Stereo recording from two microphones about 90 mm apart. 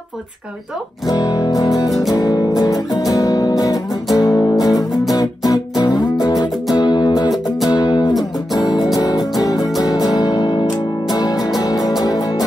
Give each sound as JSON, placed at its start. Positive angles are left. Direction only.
{"t": 1.0, "sound": "music", "side_deg": 45}
{"t": 1.9, "sound": "music", "side_deg": 0}
{"t": 2.1, "sound": "music", "side_deg": 45}